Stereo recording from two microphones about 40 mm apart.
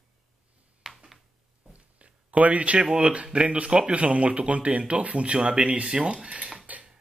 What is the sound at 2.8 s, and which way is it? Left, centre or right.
Speech, right.